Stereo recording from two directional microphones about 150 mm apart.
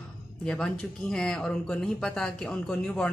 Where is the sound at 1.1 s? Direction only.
5° left (ahead or behind).